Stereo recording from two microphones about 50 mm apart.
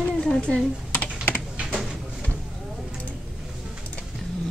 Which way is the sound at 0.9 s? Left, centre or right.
Left.